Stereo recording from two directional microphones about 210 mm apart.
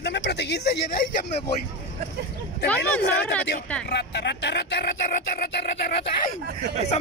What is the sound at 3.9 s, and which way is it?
Speech, 55° left (ahead or behind).